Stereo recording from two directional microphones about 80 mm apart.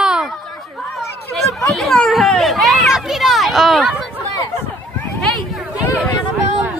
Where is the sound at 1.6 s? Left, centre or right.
Centre.